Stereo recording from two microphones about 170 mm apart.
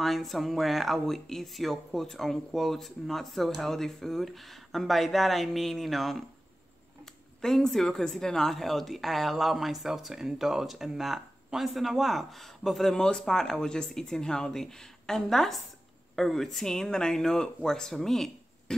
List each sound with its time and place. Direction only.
0.0 s a woman's voice: centre (ahead or behind)
7.4 s a woman's voice: centre (ahead or behind)